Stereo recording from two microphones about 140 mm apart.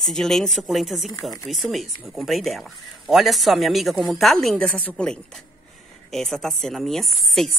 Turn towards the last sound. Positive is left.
turn(degrees=0)  # may be behind; listen again after turning